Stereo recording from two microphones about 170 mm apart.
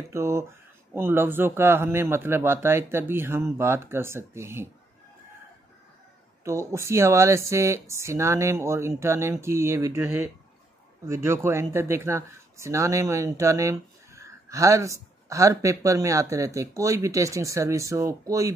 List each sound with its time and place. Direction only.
0.1 s speech: 15° right (ahead or behind)
6.4 s speech: 15° right (ahead or behind)